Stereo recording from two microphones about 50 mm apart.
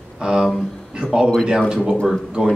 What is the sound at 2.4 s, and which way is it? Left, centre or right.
Speech, centre.